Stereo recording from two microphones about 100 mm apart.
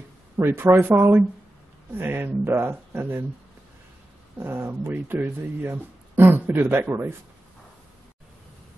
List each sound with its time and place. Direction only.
0.4 s speech: 20° right (ahead or behind)
4.4 s speech: 20° right (ahead or behind)